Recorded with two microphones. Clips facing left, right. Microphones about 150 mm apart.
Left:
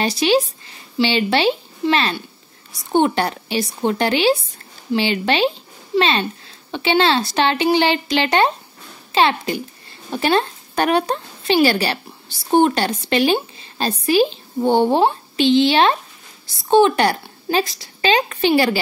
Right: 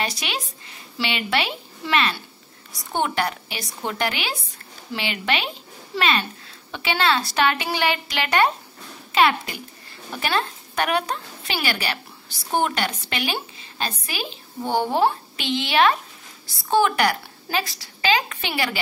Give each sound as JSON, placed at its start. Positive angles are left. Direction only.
{"t": 0.0, "sound": "a woman's voice", "side_deg": 30}